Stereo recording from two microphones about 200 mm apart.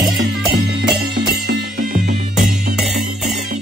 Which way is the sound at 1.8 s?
40° right (ahead or behind).